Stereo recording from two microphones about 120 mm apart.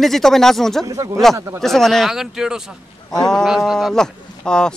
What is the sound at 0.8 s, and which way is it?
Speech, 30° right (ahead or behind).